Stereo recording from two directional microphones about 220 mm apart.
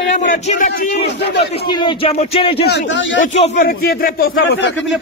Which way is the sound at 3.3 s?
30° left (ahead or behind).